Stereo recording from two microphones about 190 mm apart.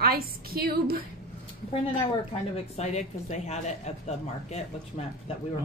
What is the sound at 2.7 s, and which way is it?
Speech, 35° left (ahead or behind).